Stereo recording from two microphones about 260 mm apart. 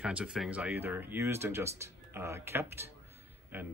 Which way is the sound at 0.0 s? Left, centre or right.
Centre.